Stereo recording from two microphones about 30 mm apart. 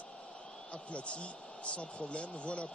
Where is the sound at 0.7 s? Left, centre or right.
Left.